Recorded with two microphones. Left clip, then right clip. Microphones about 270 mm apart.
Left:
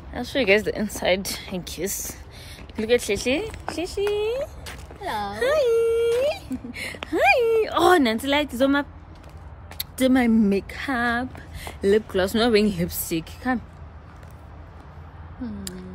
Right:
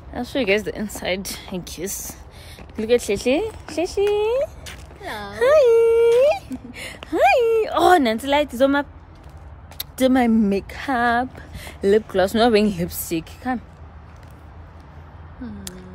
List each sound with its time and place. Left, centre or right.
0.1 s speech: centre
4.6 s a sound: centre
5.4 s speech: right
6.1 s a sound: right
6.7 s speech: centre
15.4 s speech: centre